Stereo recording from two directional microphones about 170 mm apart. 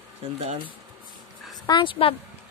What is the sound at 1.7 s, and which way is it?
Speech, 30° left (ahead or behind).